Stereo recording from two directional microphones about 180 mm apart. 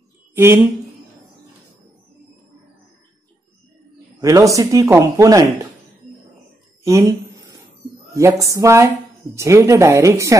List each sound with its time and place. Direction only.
0.3 s a sound: 15° right (ahead or behind)
4.2 s speech: 20° right (ahead or behind)
6.8 s speech: 15° right (ahead or behind)